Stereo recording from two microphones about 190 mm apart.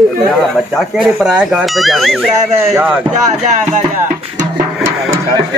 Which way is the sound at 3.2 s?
40° right (ahead or behind).